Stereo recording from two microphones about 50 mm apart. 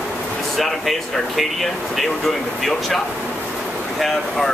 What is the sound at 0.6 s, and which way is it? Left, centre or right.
Speech, centre.